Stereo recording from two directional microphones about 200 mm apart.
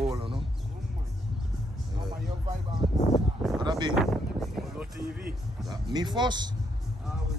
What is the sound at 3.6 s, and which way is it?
Speech, 20° right (ahead or behind).